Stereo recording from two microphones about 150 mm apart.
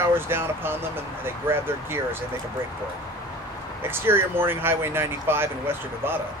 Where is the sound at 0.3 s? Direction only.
15° right (ahead or behind).